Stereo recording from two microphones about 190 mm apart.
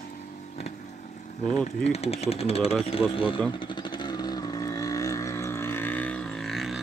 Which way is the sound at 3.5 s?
25° left (ahead or behind).